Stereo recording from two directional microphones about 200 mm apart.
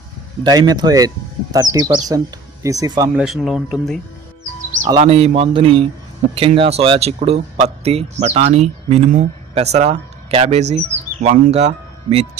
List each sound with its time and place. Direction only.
0.4 s speech: 20° right (ahead or behind)
3.2 s speech: centre (ahead or behind)
5.0 s speech: 30° right (ahead or behind)